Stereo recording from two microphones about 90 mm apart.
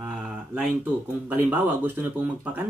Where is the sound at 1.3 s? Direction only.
20° right (ahead or behind).